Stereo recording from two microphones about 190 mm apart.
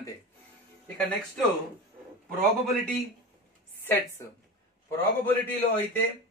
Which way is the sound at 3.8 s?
10° left (ahead or behind).